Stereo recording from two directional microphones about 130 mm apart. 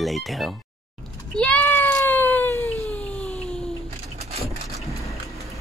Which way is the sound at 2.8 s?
10° left (ahead or behind).